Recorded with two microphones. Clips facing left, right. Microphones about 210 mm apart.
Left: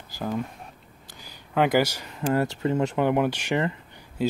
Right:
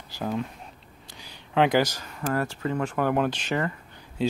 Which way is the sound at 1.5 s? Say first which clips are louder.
Even; 5° left (ahead or behind).